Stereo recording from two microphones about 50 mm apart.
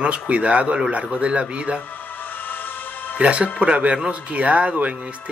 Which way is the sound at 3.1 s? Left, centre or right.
Right.